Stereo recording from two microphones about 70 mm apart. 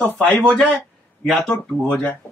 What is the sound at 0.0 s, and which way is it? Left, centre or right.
Speech, left.